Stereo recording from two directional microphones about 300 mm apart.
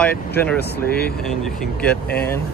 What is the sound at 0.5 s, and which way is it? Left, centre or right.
Speech, left.